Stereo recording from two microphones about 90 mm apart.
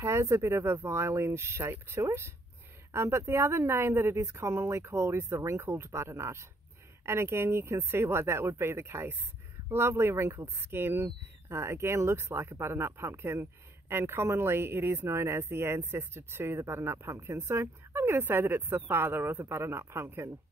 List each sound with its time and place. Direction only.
0.0 s speech: 30° right (ahead or behind)